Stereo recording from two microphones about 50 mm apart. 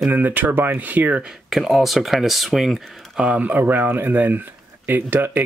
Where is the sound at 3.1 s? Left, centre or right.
Right.